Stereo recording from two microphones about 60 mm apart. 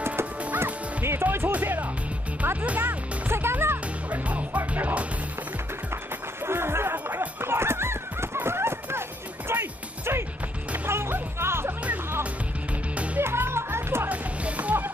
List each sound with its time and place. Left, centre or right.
0.0 s music: right
1.0 s speech: right
1.5 s music: right
6.4 s a sound: right
7.1 s a sound: right
7.5 s a sound: right
9.5 s music: right
12.9 s music: right
13.2 s music: right
14.0 s music: right